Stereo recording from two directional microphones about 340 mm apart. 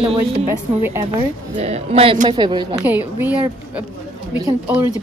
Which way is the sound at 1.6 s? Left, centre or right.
Centre.